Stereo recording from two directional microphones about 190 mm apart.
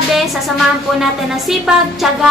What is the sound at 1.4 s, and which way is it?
Speech, centre (ahead or behind).